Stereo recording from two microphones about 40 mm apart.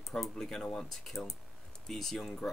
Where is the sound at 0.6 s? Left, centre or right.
Left.